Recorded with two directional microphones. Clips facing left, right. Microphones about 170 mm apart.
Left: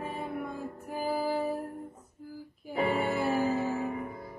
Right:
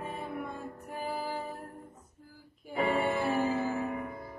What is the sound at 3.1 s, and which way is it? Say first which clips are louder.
Music: left 1 dB; centre (ahead or behind).